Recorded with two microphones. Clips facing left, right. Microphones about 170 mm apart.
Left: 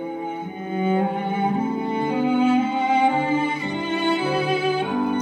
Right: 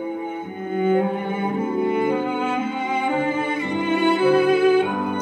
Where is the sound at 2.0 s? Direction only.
50° right (ahead or behind).